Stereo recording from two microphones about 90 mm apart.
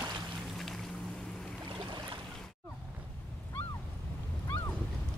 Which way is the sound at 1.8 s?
60° right (ahead or behind).